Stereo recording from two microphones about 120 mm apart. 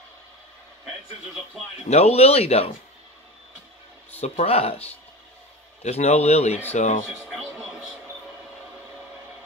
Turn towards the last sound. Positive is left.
turn(degrees=-5)  # may be behind; listen again after turning